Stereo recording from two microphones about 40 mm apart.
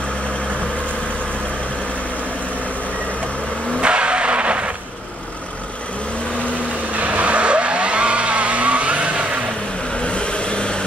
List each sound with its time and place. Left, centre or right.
3.8 s vehicle: right
7.0 s vehicle: right
10.0 s vehicle: left